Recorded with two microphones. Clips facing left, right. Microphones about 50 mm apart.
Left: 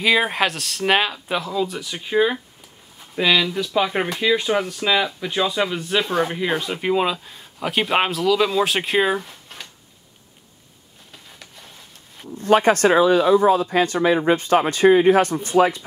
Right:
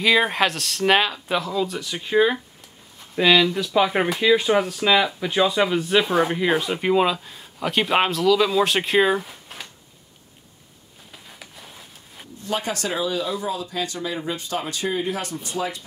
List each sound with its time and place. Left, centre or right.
0.0 s speech: centre
11.1 s a sound: centre
12.4 s speech: left